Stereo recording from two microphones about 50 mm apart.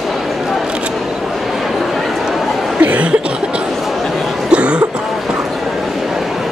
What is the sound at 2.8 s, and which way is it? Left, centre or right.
Cough, right.